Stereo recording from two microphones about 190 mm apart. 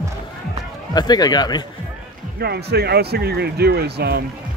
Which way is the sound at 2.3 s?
60° right (ahead or behind).